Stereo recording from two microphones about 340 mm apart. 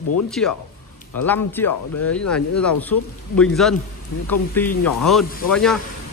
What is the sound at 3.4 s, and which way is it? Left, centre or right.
Speech, centre.